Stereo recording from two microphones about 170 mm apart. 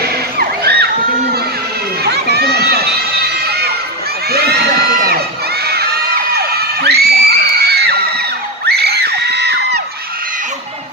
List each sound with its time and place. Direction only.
0.0 s music: 70° right (ahead or behind)
2.0 s run: 70° right (ahead or behind)
3.4 s crowd: 70° right (ahead or behind)
5.7 s crowd: 65° right (ahead or behind)